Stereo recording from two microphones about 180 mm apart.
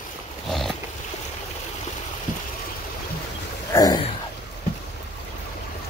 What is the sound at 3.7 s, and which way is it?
Throat clearing, 20° left (ahead or behind).